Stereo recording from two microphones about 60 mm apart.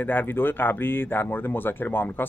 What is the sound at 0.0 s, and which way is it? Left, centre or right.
Speech, left.